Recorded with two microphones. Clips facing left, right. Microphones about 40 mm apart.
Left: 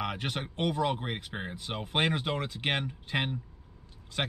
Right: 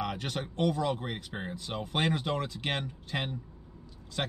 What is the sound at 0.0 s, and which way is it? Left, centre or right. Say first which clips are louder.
Speech: even; left.